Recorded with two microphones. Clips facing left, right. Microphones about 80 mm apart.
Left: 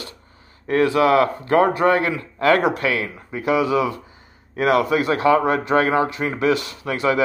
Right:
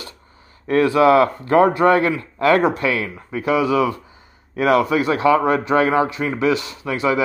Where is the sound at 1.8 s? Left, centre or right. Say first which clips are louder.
Right 3 dB; left.